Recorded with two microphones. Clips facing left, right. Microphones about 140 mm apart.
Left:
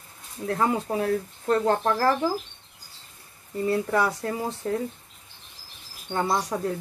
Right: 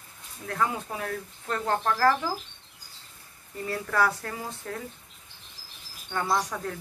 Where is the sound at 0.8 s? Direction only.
35° left (ahead or behind).